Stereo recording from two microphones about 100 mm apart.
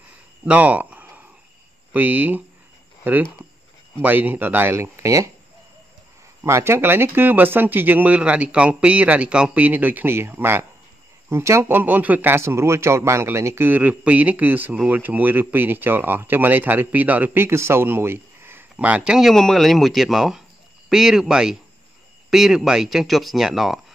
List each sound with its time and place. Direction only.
0.5 s a sound: 15° right (ahead or behind)
1.9 s speech: 15° right (ahead or behind)
6.4 s speech: 25° right (ahead or behind)
19.1 s speech: centre (ahead or behind)